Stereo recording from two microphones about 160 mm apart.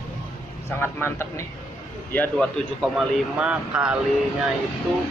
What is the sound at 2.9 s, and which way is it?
Speech, 5° right (ahead or behind).